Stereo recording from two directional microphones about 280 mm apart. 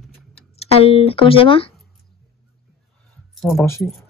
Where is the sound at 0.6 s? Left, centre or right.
Left.